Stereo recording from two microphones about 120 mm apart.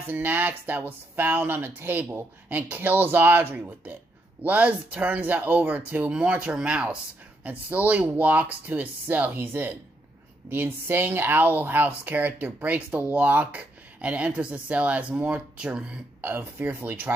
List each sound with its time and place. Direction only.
0.0 s speech: 15° right (ahead or behind)